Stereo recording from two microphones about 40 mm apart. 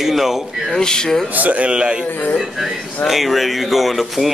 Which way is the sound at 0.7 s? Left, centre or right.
Centre.